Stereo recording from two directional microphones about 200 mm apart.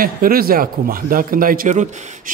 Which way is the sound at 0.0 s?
45° right (ahead or behind).